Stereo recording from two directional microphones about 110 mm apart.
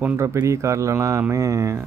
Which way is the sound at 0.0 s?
20° right (ahead or behind).